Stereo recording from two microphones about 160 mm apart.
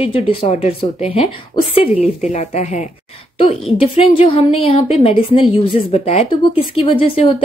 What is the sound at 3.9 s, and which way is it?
Speech, 35° left (ahead or behind).